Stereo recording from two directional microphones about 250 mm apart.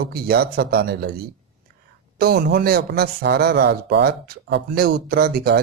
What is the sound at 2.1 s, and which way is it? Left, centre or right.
A man's voice, right.